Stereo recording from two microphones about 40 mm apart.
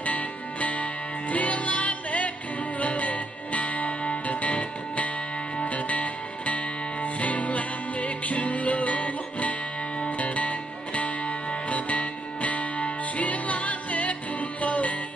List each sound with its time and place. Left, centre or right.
0.0 s music: left